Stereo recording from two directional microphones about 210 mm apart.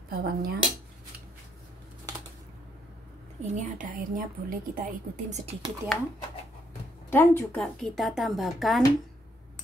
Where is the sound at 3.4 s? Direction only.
35° right (ahead or behind).